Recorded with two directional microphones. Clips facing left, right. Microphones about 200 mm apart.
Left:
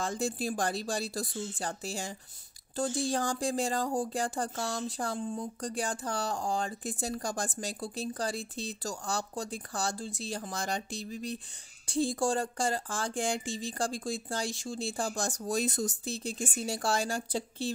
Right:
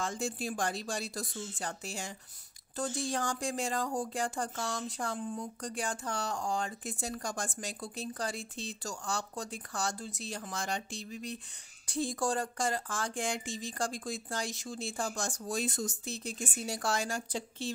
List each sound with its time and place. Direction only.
0.0 s speech: 35° left (ahead or behind)